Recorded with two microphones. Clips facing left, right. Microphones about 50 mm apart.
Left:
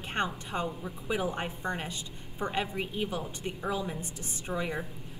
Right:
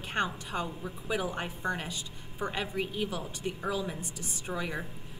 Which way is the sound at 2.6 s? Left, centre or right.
Centre.